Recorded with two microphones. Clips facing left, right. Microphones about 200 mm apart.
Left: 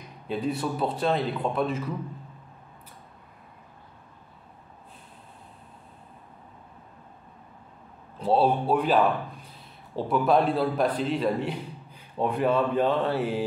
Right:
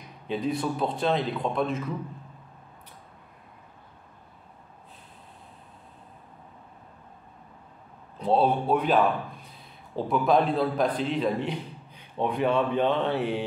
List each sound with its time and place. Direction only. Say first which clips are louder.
0.3 s a man's voice: even; 5° left (ahead or behind)
8.2 s a man's voice: left 1 dB; 5° left (ahead or behind)